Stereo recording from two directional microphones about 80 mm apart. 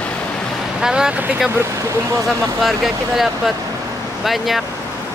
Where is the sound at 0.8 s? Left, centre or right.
Centre.